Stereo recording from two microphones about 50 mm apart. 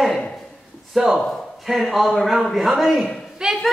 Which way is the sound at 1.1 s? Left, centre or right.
Centre.